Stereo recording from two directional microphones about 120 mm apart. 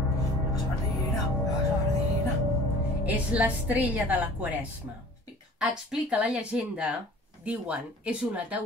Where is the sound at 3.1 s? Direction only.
10° right (ahead or behind).